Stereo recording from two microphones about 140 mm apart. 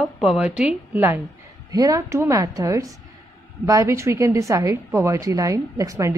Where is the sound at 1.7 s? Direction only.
25° right (ahead or behind).